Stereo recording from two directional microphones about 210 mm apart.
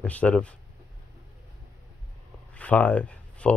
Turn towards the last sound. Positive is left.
turn(degrees=5)  # may be behind; listen again after turning